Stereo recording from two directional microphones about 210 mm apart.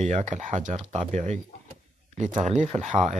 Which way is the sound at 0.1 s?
35° right (ahead or behind).